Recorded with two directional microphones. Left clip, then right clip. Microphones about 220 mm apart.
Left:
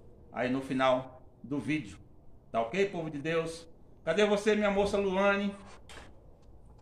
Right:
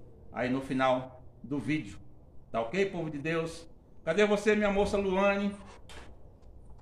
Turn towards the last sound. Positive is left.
turn(degrees=0)  # may be behind; listen again after turning